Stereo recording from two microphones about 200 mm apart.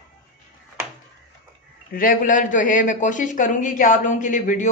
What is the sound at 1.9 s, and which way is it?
A man's voice, 45° left (ahead or behind).